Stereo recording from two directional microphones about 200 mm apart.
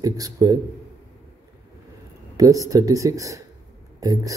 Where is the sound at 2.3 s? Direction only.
15° right (ahead or behind).